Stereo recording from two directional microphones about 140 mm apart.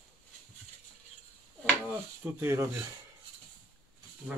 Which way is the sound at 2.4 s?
20° right (ahead or behind).